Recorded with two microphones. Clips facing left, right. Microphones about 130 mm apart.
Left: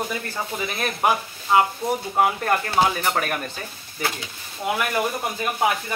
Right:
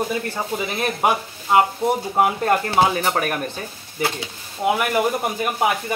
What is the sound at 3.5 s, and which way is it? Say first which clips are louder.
Speech: right 3 dB; 25° right (ahead or behind).